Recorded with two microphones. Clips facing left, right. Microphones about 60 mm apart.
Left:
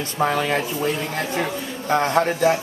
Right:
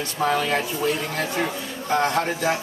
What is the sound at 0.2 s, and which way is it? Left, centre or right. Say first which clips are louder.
Speech: left 1 dB; left.